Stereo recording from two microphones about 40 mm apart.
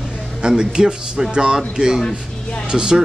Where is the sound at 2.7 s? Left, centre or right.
Centre.